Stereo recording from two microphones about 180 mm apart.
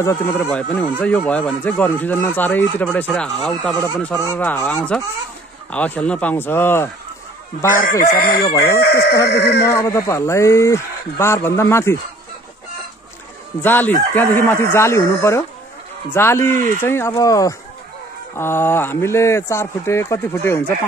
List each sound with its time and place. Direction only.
0.0 s speech: 15° left (ahead or behind)
7.7 s speech: 50° left (ahead or behind)
9.8 s speech: 15° left (ahead or behind)
13.6 s speech: 10° left (ahead or behind)